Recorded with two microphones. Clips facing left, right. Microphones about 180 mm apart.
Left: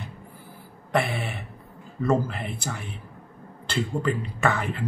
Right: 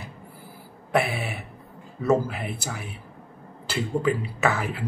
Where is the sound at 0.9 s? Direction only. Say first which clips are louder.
Right 1 dB; 5° right (ahead or behind).